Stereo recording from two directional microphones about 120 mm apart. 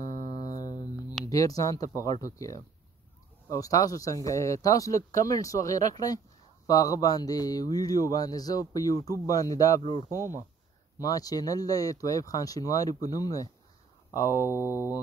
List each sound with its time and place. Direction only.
0.0 s music: 30° left (ahead or behind)
1.2 s speech: 30° left (ahead or behind)
11.0 s speech: 30° left (ahead or behind)